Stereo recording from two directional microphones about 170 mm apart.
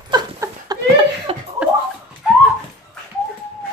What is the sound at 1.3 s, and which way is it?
Chuckle, 35° right (ahead or behind).